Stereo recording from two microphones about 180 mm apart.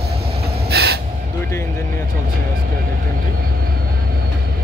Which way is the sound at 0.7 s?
65° right (ahead or behind).